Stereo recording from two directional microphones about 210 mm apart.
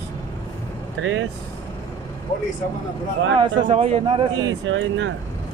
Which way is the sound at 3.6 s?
25° right (ahead or behind).